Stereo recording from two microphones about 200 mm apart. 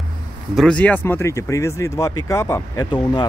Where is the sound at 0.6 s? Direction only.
5° left (ahead or behind).